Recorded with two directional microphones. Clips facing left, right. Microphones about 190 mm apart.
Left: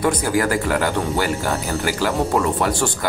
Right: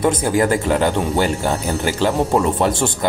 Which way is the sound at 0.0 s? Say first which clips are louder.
Right 3 dB; 25° right (ahead or behind).